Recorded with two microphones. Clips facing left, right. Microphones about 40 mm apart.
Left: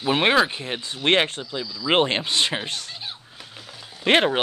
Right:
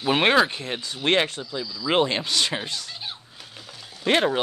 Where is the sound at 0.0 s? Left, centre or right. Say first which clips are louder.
Even; centre.